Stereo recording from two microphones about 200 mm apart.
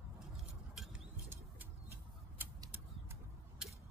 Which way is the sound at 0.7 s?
5° right (ahead or behind).